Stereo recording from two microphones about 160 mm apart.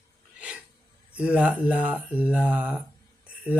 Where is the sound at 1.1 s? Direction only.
5° right (ahead or behind).